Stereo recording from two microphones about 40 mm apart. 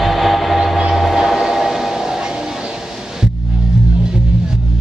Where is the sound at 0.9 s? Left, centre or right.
Centre.